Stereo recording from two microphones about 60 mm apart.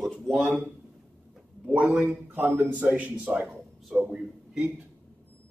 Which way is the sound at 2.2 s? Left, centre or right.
Right.